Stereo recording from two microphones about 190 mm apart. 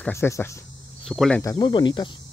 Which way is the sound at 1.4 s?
20° left (ahead or behind).